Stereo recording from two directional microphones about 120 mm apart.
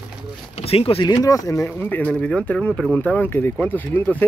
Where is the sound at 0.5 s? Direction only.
55° left (ahead or behind).